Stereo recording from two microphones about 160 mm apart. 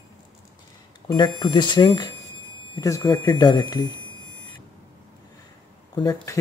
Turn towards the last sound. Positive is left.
turn(degrees=20)  # may be behind; listen again after turning